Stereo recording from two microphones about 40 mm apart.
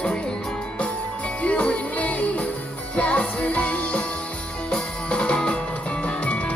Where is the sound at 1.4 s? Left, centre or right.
Left.